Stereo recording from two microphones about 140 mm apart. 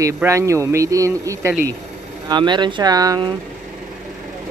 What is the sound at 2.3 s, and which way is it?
Speech, 35° right (ahead or behind).